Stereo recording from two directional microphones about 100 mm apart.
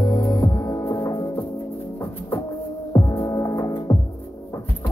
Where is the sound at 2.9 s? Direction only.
35° left (ahead or behind).